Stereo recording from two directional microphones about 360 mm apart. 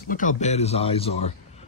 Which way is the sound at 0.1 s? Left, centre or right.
Left.